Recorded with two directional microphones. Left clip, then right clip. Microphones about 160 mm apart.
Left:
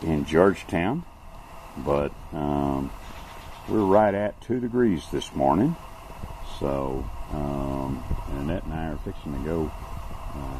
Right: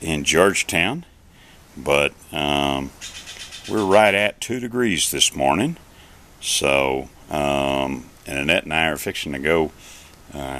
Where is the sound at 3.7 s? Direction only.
25° right (ahead or behind).